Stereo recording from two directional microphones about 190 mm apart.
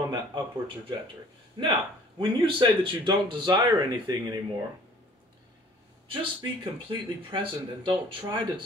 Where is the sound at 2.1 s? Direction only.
25° right (ahead or behind).